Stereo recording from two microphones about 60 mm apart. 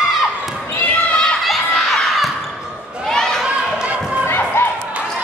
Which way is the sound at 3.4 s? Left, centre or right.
Centre.